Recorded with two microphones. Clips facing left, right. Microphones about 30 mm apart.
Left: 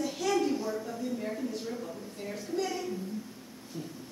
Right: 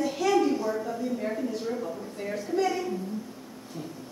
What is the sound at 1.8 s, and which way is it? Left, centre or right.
Speech, right.